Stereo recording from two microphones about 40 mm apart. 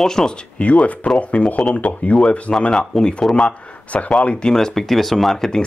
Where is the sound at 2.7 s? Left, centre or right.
Centre.